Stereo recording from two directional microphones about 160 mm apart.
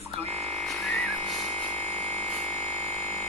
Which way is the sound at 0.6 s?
Centre (ahead or behind).